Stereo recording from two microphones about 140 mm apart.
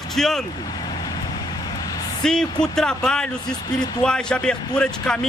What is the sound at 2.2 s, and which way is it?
Speech, 5° left (ahead or behind).